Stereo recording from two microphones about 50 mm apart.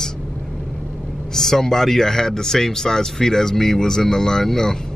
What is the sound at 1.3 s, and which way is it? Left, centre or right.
Speech, centre.